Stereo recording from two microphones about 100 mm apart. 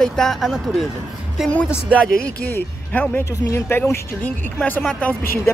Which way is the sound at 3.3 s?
35° left (ahead or behind).